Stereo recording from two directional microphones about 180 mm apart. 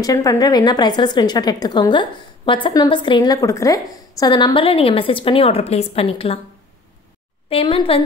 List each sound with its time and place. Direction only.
0.0 s speech: 20° left (ahead or behind)
7.4 s a woman's voice: 30° left (ahead or behind)